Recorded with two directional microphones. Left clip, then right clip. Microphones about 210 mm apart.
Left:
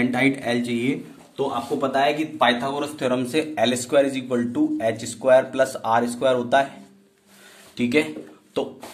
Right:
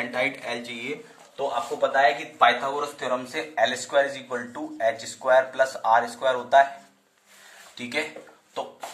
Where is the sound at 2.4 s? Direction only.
45° left (ahead or behind).